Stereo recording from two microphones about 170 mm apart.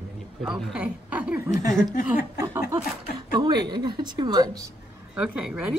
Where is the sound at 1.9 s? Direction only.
55° left (ahead or behind).